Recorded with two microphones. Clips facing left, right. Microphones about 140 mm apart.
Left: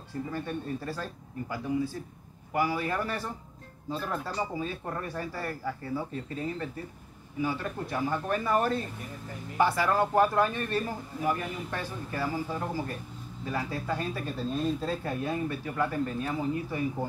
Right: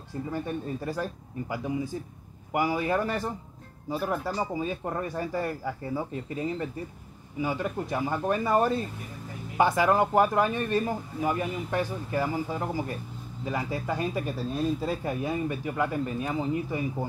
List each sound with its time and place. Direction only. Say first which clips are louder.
0.3 s speech: right 3 dB; 15° right (ahead or behind)